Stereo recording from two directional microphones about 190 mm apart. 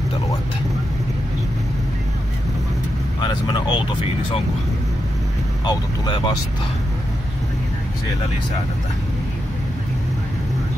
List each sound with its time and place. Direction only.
3.2 s speech: 25° left (ahead or behind)
5.7 s speech: 25° left (ahead or behind)